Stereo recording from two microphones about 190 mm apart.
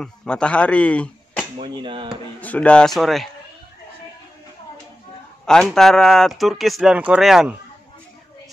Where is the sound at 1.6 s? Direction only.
25° right (ahead or behind).